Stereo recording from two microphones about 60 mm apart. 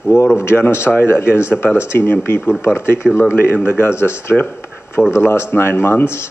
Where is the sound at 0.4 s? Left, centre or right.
Left.